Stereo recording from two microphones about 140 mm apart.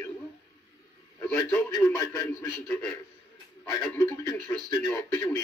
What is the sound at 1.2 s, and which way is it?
Speech, 15° left (ahead or behind).